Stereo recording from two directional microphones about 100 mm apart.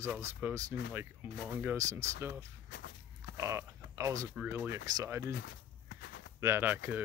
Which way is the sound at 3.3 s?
30° right (ahead or behind).